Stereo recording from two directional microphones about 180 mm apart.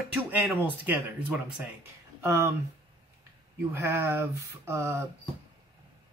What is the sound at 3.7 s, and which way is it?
Speech, 15° right (ahead or behind).